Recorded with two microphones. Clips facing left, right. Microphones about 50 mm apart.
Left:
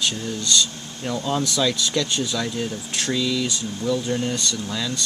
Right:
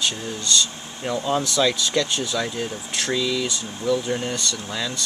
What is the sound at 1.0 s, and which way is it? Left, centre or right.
Speech, centre.